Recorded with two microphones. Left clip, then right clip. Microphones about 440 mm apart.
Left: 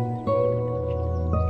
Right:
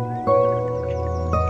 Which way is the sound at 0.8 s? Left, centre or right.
Right.